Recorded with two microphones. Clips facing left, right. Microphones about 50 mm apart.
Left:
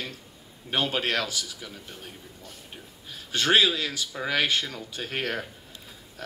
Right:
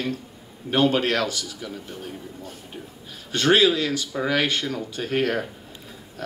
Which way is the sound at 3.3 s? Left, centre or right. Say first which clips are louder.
Right 4 dB; centre.